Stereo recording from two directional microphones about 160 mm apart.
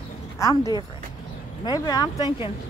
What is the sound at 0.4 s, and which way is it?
Speech, 20° left (ahead or behind).